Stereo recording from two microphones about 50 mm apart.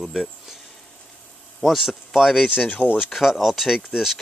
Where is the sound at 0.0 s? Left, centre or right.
Centre.